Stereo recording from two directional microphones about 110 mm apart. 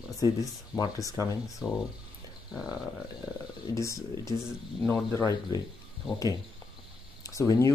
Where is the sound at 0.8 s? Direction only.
30° left (ahead or behind).